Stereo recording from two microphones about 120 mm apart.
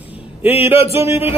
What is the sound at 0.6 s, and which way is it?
Speech, 55° left (ahead or behind).